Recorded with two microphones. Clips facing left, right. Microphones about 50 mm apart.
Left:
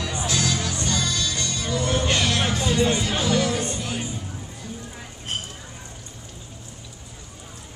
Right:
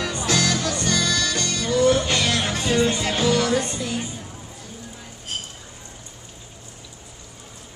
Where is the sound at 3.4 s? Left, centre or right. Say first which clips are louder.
Right 2 dB; right.